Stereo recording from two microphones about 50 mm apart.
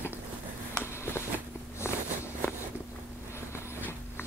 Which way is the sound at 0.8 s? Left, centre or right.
Left.